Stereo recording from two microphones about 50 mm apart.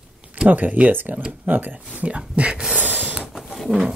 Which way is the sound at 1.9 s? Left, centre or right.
Right.